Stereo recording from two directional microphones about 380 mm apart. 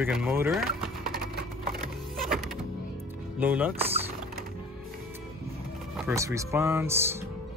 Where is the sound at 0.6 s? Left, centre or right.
Right.